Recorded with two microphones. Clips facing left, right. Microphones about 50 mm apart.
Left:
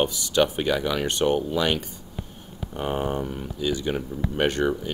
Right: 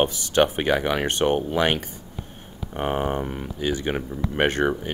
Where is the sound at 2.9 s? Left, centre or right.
Right.